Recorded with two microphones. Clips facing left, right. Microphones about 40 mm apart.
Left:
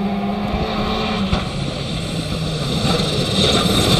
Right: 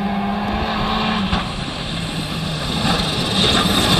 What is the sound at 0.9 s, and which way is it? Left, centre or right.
Vehicle, right.